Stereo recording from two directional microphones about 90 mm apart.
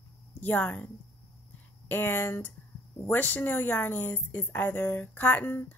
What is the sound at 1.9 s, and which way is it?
A woman's voice, 25° left (ahead or behind).